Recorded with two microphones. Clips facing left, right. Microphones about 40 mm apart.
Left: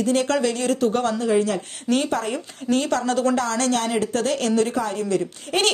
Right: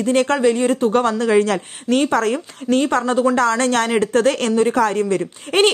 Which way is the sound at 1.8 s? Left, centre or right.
Right.